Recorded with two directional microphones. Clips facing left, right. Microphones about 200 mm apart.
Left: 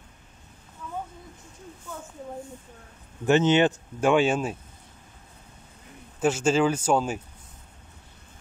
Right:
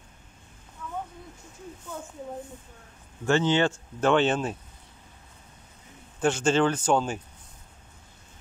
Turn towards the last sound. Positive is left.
turn(degrees=5)  # may be behind; listen again after turning